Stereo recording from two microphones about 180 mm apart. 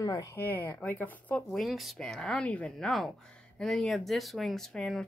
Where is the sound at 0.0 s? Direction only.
20° left (ahead or behind).